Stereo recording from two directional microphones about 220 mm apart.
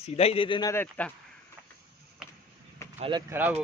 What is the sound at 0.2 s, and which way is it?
Speech, 25° left (ahead or behind).